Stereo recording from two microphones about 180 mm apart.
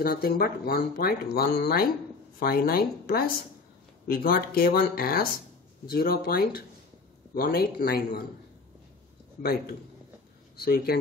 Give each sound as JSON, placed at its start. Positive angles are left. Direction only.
{"t": 0.0, "sound": "speech", "side_deg": 55}
{"t": 9.4, "sound": "speech", "side_deg": 55}